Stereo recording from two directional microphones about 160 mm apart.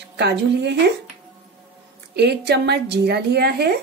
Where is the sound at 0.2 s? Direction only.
90° right.